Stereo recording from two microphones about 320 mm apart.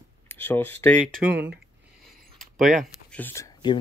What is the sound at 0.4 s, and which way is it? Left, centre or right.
Speech, centre.